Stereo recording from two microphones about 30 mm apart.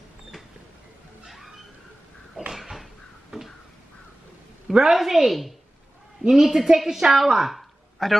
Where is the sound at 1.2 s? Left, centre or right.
Centre.